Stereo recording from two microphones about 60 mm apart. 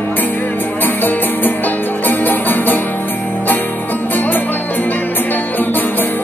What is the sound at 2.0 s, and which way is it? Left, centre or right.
Music, left.